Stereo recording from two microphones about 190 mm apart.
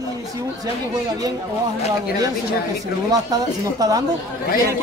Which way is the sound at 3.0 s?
20° right (ahead or behind).